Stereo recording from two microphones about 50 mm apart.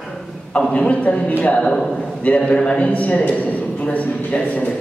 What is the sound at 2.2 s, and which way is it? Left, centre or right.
A man's voice, left.